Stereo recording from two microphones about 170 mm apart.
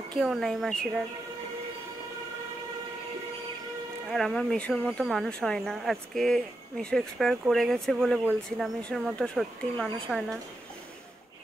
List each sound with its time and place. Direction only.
0.1 s speech: centre (ahead or behind)
4.1 s speech: 5° left (ahead or behind)